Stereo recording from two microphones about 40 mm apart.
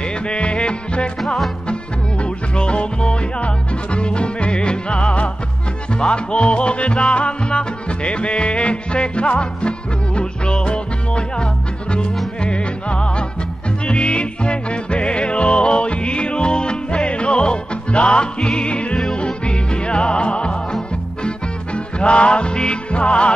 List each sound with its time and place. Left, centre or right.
0.0 s music: left
1.2 s music: centre
1.7 s music: left
21.7 s music: left